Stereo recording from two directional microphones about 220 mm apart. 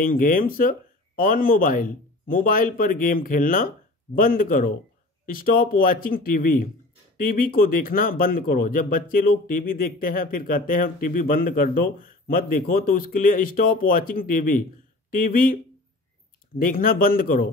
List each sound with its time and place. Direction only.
0.0 s speech: 40° left (ahead or behind)